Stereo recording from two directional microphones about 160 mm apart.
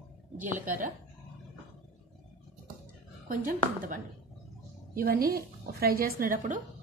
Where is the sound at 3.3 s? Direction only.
55° right (ahead or behind).